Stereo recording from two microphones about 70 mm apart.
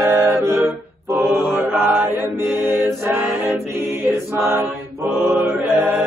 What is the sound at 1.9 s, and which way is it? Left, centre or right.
A capella, right.